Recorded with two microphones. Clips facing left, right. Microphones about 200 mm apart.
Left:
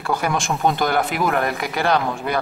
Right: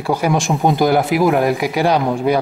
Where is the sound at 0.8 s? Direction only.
Centre (ahead or behind).